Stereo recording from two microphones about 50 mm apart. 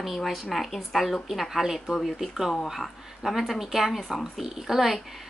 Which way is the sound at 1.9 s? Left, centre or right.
Centre.